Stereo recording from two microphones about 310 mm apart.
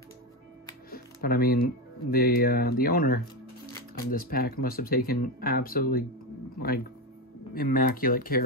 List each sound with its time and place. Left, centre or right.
0.8 s music: left
2.0 s speech: left
7.5 s speech: left